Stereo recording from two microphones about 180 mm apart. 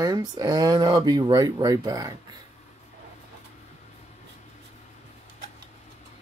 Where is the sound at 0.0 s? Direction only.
20° right (ahead or behind).